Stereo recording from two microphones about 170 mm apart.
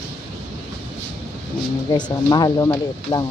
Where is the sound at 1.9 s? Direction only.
25° left (ahead or behind).